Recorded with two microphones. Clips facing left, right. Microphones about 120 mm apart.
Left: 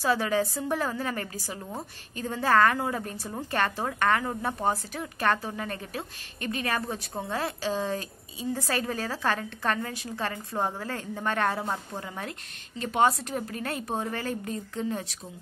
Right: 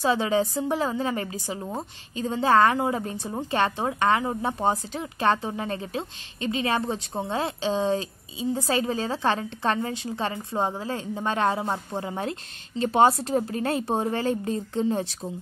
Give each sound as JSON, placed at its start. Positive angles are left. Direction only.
{"t": 0.0, "sound": "a woman's voice", "side_deg": -20}